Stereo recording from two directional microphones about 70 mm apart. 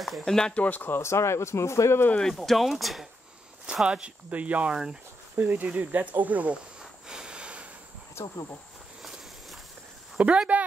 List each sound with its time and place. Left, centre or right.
0.0 s speech: centre
0.7 s speech: left
2.1 s speech: centre
3.6 s speech: centre
5.3 s speech: right
6.8 s a sound: centre
8.2 s speech: left
10.1 s speech: centre